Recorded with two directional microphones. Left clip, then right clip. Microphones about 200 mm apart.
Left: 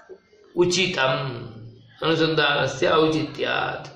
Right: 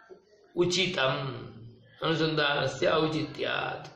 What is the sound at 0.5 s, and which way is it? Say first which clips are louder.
Mantra: left 6 dB; 5° left (ahead or behind).